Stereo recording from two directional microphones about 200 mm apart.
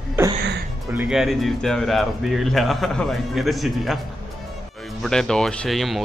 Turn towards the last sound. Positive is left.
turn(degrees=0)  # may be behind; listen again after turning